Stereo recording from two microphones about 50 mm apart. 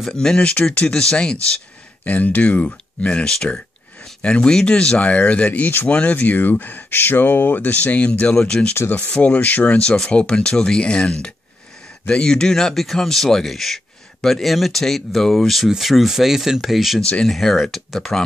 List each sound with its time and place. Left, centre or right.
0.0 s speech: centre
2.0 s speech: left
8.2 s speech: left
9.9 s speech: centre
17.0 s speech: left
17.3 s speech: centre